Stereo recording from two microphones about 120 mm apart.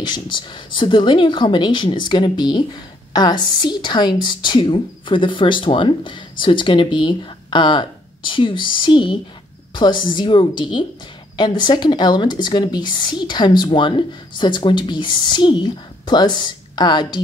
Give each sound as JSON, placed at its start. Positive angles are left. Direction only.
{"t": 0.0, "sound": "a woman's voice", "side_deg": 40}